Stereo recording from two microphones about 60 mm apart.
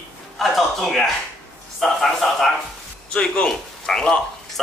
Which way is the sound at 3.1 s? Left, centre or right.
Centre.